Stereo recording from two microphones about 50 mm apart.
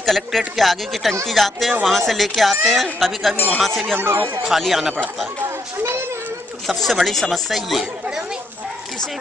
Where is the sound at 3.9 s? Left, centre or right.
Right.